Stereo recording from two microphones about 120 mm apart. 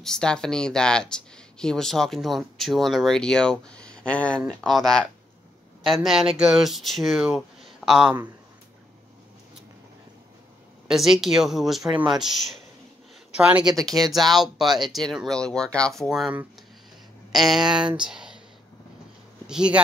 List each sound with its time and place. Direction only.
0.0 s speech: 5° left (ahead or behind)
10.9 s speech: centre (ahead or behind)
13.7 s speech: 30° right (ahead or behind)
14.0 s speech: centre (ahead or behind)
16.0 s speech: 5° right (ahead or behind)
19.4 s speech: 5° right (ahead or behind)